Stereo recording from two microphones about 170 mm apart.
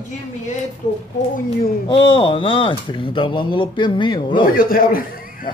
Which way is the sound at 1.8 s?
30° left (ahead or behind).